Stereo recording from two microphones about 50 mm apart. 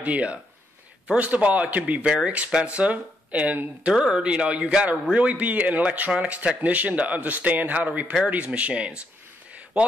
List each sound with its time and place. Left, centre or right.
0.0 s a man's voice: right